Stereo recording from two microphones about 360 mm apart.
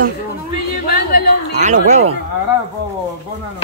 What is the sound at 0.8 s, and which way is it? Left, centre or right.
Speech, left.